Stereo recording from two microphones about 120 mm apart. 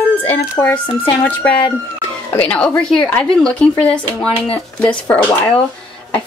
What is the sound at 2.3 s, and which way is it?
A woman's voice, 10° left (ahead or behind).